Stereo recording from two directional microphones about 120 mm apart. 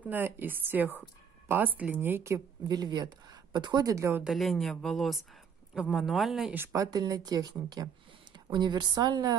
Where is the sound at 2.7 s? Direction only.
35° right (ahead or behind).